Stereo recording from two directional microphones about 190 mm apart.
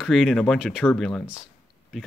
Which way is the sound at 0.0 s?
Centre (ahead or behind).